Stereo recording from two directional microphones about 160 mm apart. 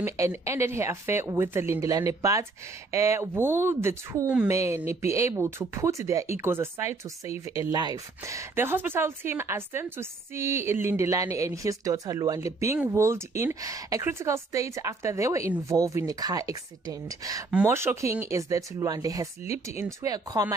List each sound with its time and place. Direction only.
0.0 s a woman's voice: 15° right (ahead or behind)
17.5 s speech: 10° right (ahead or behind)